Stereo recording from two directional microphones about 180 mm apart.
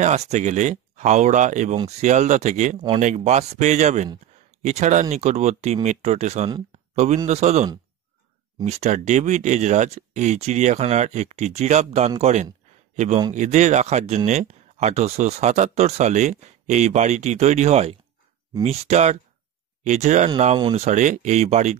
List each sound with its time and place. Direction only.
0.0 s a man's voice: 40° right (ahead or behind)